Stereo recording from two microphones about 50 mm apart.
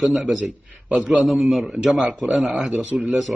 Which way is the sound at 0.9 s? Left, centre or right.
Centre.